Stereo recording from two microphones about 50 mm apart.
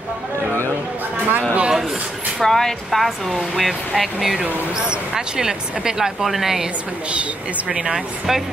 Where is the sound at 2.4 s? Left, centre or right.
Centre.